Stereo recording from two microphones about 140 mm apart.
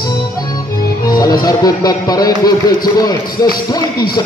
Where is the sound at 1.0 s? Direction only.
30° left (ahead or behind).